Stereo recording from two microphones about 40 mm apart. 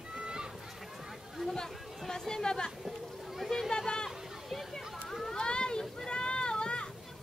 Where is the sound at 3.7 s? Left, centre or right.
Centre.